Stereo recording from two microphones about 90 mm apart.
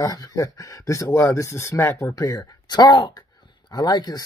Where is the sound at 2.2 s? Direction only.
40° left (ahead or behind).